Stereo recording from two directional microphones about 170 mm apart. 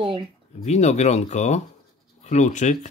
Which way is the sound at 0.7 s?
40° left (ahead or behind).